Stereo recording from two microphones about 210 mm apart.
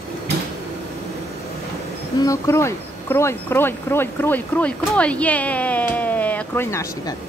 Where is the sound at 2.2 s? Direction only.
15° left (ahead or behind).